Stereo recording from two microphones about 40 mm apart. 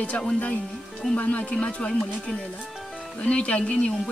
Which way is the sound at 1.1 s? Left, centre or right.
Left.